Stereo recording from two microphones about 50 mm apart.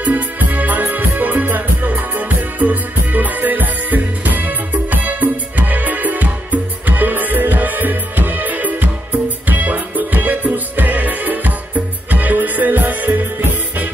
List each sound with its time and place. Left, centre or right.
0.0 s music: right